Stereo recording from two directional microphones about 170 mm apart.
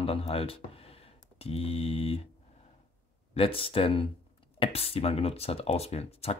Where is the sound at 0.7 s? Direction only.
35° left (ahead or behind).